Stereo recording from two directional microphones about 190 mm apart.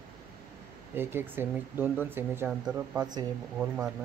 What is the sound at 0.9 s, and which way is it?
Speech, 10° right (ahead or behind).